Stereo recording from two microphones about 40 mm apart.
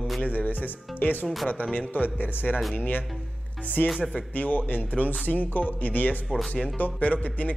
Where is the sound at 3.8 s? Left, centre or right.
Left.